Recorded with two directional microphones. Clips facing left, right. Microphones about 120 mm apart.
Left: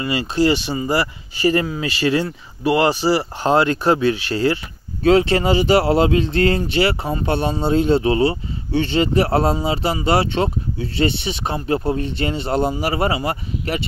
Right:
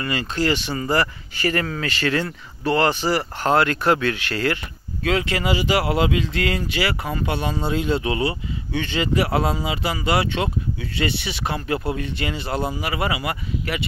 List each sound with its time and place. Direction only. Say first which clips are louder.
0.0 s speech: left 5 dB; 15° left (ahead or behind)
5.0 s speech: left 8 dB; 30° left (ahead or behind)